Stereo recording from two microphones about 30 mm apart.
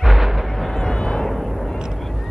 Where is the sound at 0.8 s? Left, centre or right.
Centre.